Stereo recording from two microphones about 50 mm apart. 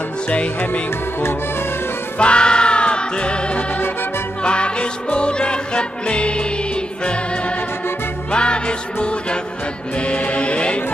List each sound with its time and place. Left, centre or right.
2.1 s music: left
8.3 s music: centre
9.9 s chant: left